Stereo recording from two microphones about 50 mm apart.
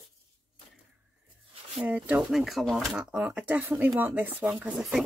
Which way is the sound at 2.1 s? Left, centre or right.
Centre.